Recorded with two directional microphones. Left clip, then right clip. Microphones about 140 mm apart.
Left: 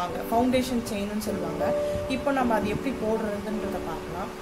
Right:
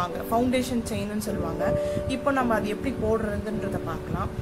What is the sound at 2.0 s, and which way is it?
Speech, 45° right (ahead or behind).